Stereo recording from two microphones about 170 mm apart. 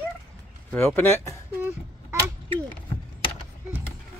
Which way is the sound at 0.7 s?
5° left (ahead or behind).